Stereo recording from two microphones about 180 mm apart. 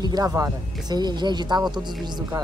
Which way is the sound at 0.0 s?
20° right (ahead or behind).